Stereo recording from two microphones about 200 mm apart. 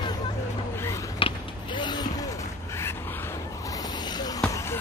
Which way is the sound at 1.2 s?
25° left (ahead or behind).